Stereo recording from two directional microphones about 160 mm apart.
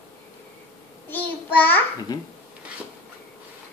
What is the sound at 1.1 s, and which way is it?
Child singing, 10° left (ahead or behind).